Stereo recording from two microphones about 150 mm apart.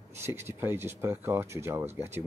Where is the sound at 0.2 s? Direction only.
15° right (ahead or behind).